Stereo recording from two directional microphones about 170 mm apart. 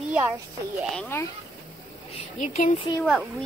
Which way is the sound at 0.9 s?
10° left (ahead or behind).